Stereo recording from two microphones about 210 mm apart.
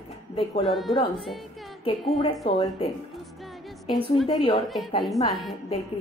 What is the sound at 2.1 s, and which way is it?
Speech, 25° left (ahead or behind).